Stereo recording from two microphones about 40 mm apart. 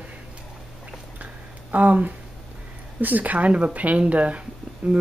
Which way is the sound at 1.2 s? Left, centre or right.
Right.